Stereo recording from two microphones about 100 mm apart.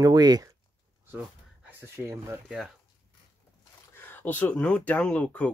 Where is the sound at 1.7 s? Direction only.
25° right (ahead or behind).